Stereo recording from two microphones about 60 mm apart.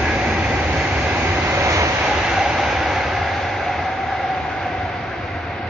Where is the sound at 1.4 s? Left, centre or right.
Right.